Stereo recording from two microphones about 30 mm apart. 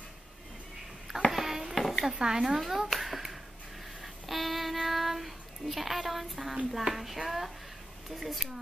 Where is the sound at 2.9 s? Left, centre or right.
Centre.